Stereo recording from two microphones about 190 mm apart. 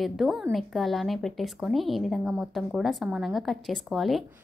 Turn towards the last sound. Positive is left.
turn(degrees=0)  # may be behind; listen again after turning